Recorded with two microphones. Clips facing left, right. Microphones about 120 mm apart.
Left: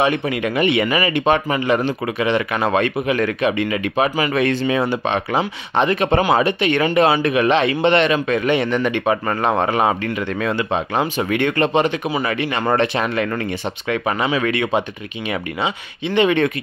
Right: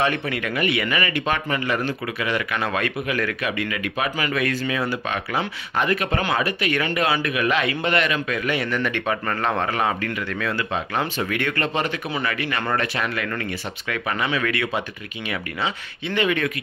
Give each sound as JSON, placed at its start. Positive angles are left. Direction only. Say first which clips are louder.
{"t": 0.0, "sound": "speech", "louder": "left 5 dB", "side_deg": 20}